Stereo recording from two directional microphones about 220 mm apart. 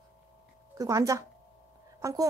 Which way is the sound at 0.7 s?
15° right (ahead or behind).